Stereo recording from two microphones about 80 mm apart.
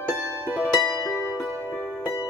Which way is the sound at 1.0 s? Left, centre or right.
Left.